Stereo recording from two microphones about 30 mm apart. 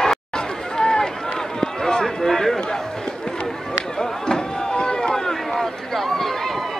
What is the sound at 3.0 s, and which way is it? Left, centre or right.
Run, left.